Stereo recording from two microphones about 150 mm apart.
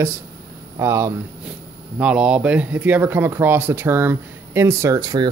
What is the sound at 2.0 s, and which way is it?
Speech, 5° right (ahead or behind).